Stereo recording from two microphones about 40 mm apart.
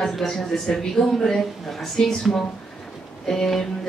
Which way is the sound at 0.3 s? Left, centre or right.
Centre.